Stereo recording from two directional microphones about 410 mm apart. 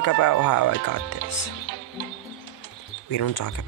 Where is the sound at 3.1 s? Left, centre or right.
Left.